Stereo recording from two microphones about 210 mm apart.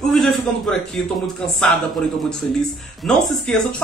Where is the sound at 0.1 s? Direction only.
Centre (ahead or behind).